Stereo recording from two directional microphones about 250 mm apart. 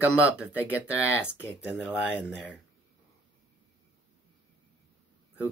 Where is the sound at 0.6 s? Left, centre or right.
Centre.